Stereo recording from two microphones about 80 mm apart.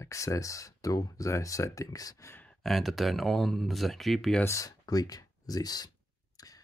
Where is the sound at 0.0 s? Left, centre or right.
Left.